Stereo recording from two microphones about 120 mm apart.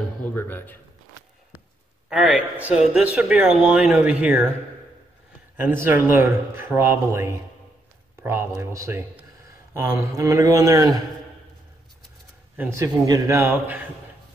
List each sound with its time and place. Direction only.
0.3 s a man's voice: 15° left (ahead or behind)
2.0 s speech: 10° right (ahead or behind)
5.6 s a man's voice: 20° right (ahead or behind)
12.5 s a man's voice: 20° right (ahead or behind)